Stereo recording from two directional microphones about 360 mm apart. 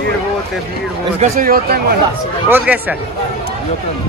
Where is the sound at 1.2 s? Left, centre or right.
Right.